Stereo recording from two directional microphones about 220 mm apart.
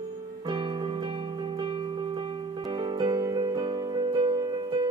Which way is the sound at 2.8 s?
20° right (ahead or behind).